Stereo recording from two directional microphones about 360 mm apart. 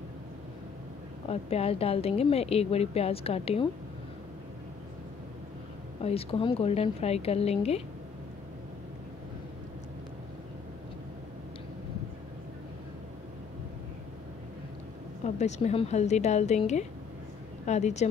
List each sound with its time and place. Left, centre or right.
1.3 s a woman's voice: centre
6.0 s a woman's voice: centre
15.2 s a woman's voice: centre